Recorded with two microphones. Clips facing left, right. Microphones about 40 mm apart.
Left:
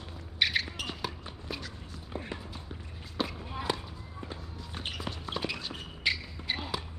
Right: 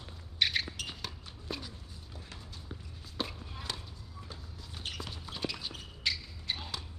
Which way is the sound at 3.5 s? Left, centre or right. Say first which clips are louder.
Left 9 dB; centre.